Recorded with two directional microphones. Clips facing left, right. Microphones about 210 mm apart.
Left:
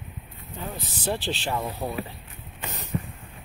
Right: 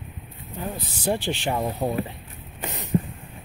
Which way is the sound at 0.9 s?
15° right (ahead or behind).